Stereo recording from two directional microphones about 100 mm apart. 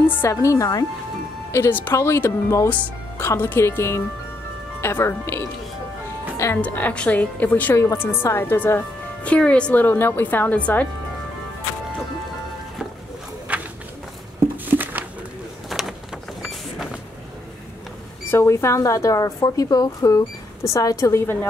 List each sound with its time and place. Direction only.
0.0 s speech: 20° left (ahead or behind)
0.3 s speech: 30° left (ahead or behind)
1.5 s a woman's voice: 25° left (ahead or behind)
6.6 s a woman's voice: 15° left (ahead or behind)
9.3 s speech: 10° left (ahead or behind)
13.5 s a sound: 15° right (ahead or behind)
14.7 s a sound: 20° right (ahead or behind)
15.7 s a sound: centre (ahead or behind)
18.3 s speech: 25° left (ahead or behind)